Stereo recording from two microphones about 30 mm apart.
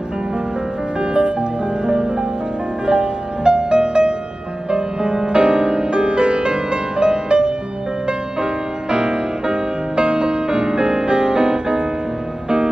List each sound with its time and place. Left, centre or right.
1.0 s music: right
8.9 s music: right